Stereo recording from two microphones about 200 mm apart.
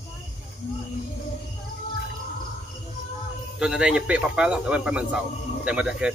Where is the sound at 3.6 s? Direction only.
5° right (ahead or behind).